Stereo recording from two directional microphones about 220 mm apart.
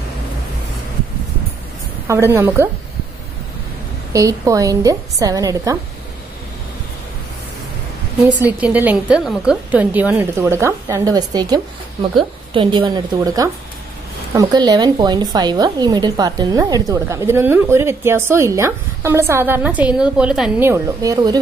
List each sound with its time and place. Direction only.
2.0 s a woman's voice: 10° right (ahead or behind)
4.1 s a woman's voice: 15° right (ahead or behind)
8.4 s a woman's voice: 5° right (ahead or behind)